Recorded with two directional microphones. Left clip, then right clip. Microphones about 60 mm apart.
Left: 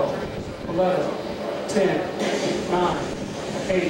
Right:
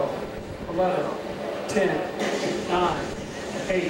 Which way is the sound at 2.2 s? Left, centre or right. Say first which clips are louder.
Left 2 dB; centre.